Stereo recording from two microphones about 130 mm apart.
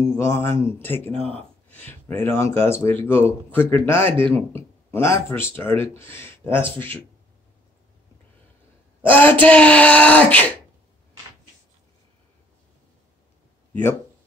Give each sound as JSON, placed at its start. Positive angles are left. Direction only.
{"t": 0.0, "sound": "speech", "side_deg": 20}
{"t": 1.1, "sound": "speech", "side_deg": -50}
{"t": 1.7, "sound": "speech", "side_deg": 15}
{"t": 9.0, "sound": "speech", "side_deg": 15}